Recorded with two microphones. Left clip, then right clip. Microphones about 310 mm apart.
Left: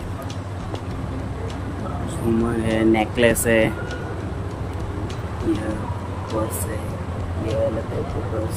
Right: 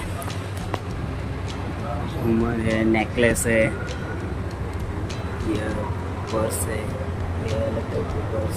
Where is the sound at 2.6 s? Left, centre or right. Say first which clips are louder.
Left 4 dB; centre.